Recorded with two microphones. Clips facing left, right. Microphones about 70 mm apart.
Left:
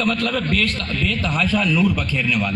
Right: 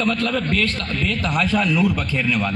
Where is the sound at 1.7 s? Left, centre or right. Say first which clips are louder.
Even; right.